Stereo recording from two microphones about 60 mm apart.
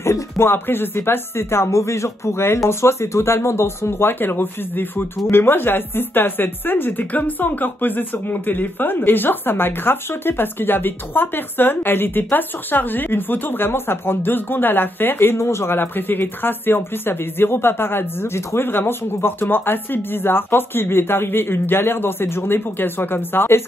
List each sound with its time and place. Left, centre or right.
0.0 s speech: left